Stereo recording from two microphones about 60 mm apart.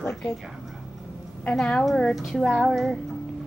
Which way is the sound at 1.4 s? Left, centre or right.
Centre.